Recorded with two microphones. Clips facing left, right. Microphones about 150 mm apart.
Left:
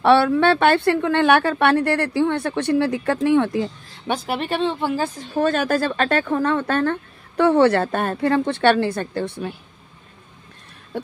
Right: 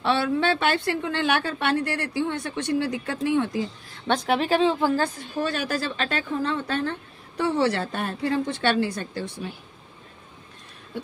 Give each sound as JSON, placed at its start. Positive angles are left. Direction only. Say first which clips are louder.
{"t": 0.0, "sound": "speech", "louder": "left 8 dB", "side_deg": 65}
{"t": 4.1, "sound": "speech", "louder": "right 2 dB", "side_deg": 5}
{"t": 5.3, "sound": "speech", "louder": "left 7 dB", "side_deg": 50}